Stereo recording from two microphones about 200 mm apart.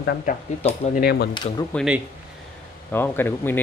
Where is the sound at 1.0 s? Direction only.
50° left (ahead or behind).